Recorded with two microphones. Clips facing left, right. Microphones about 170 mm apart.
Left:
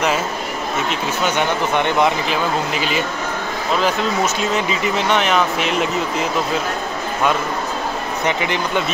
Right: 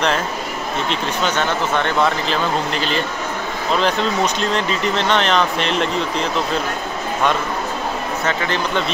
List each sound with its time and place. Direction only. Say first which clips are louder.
0.8 s speech: right 1 dB; 10° left (ahead or behind)
8.3 s speech: left 1 dB; 15° left (ahead or behind)